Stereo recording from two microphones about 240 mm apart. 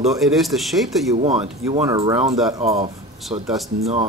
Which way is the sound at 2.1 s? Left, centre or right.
Centre.